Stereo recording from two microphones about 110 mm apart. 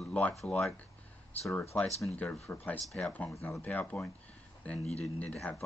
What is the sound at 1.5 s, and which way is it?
Speech, 15° left (ahead or behind).